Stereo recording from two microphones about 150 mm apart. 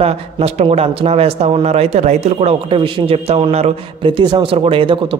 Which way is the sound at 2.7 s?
35° right (ahead or behind).